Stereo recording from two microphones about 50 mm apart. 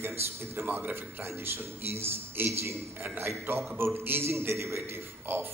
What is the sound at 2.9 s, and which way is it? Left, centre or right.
A man's voice, right.